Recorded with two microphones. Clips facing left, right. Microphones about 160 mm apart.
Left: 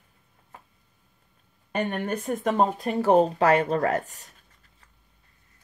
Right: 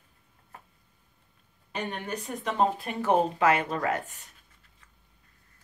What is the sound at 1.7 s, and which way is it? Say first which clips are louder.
Speech: left 6 dB; 50° left (ahead or behind).